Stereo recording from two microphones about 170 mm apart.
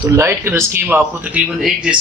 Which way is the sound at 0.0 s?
15° right (ahead or behind).